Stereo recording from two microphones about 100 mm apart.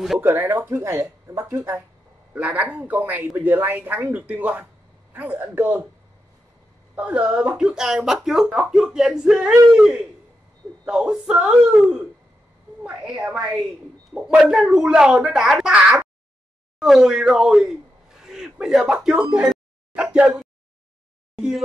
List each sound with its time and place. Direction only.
0.2 s speech: 20° right (ahead or behind)
2.3 s speech: 15° right (ahead or behind)
7.0 s speech: 15° right (ahead or behind)
19.3 s a sound: 10° right (ahead or behind)